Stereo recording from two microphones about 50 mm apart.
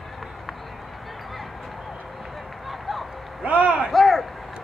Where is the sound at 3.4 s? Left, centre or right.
Right.